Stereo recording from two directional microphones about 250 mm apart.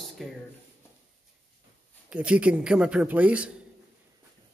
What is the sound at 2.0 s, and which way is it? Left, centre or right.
Speech, centre.